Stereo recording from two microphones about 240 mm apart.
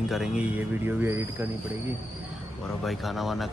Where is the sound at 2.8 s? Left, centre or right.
Centre.